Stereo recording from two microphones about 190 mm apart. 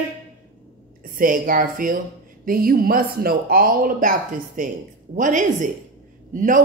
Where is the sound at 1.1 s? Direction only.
45° right (ahead or behind).